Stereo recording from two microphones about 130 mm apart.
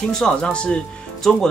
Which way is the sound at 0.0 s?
5° left (ahead or behind).